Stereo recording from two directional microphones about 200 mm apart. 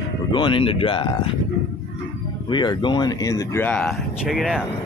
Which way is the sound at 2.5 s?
25° left (ahead or behind).